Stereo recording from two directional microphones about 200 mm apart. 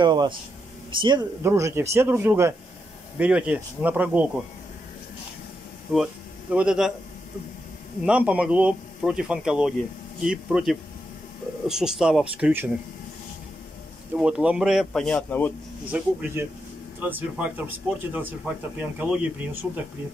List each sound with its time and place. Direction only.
0.0 s a man's voice: 20° right (ahead or behind)
6.5 s speech: 5° right (ahead or behind)
8.0 s speech: 5° right (ahead or behind)
14.1 s speech: 5° right (ahead or behind)
15.9 s speech: 5° right (ahead or behind)